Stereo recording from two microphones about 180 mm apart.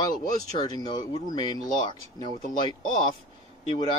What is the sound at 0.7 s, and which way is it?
Speech, 20° left (ahead or behind).